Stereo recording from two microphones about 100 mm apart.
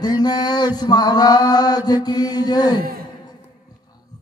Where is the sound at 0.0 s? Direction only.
45° left (ahead or behind).